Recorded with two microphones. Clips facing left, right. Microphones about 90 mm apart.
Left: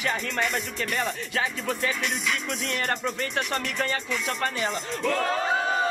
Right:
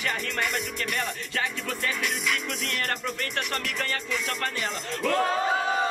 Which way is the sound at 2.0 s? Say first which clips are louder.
Even; centre (ahead or behind).